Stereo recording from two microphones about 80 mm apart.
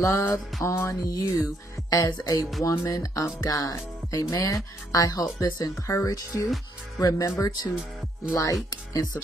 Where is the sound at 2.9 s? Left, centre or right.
Left.